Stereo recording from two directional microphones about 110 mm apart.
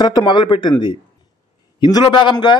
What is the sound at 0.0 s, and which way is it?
Speech, 40° left (ahead or behind).